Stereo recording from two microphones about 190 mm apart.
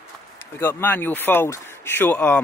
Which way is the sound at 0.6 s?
10° left (ahead or behind).